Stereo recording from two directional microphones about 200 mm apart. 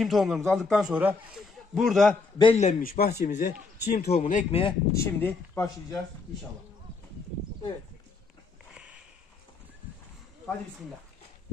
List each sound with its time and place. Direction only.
0.0 s a man's voice: centre (ahead or behind)
2.3 s a man's voice: 25° left (ahead or behind)
2.6 s speech: 40° left (ahead or behind)
4.9 s speech: 10° left (ahead or behind)
8.7 s a sound: 5° right (ahead or behind)